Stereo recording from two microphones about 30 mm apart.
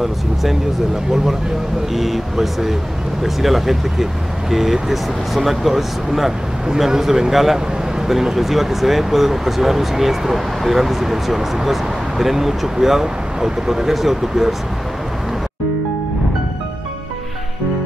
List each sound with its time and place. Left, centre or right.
0.0 s speech: centre
2.0 s speech: centre